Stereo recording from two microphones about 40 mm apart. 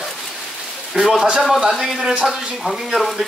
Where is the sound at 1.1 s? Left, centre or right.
Right.